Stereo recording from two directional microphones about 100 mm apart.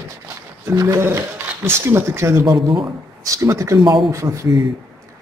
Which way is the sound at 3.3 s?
30° right (ahead or behind).